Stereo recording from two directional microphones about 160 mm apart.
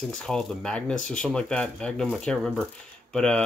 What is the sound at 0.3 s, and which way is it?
Speech, 5° left (ahead or behind).